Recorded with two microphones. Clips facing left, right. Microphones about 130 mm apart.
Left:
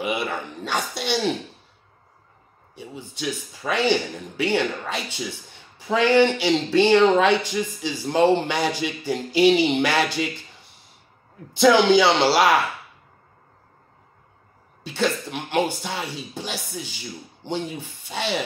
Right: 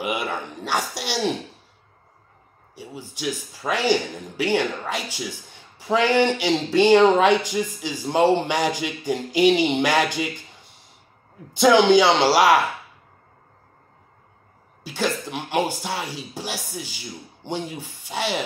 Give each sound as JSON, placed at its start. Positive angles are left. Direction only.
{"t": 0.0, "sound": "speech", "side_deg": -15}
{"t": 3.2, "sound": "speech", "side_deg": -15}
{"t": 11.5, "sound": "speech", "side_deg": -20}
{"t": 14.8, "sound": "speech", "side_deg": -10}